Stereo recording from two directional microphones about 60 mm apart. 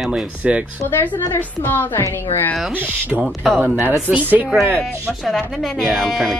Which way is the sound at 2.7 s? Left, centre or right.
Right.